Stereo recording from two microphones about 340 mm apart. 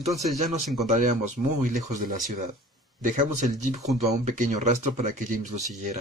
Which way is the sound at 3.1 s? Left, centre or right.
Right.